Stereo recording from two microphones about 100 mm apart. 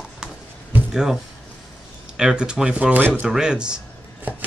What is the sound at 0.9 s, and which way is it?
Speech, 5° right (ahead or behind).